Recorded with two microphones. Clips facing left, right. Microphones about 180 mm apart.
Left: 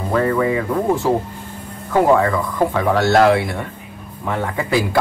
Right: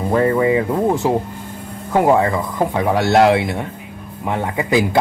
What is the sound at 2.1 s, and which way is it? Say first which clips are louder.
Speech: even; 15° right (ahead or behind).